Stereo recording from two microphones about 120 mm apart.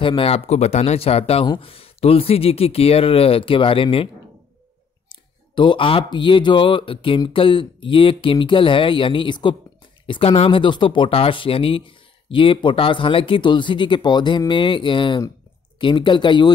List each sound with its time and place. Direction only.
0.0 s speech: 45° left (ahead or behind)
5.1 s a sound: 45° left (ahead or behind)
6.0 s speech: 40° left (ahead or behind)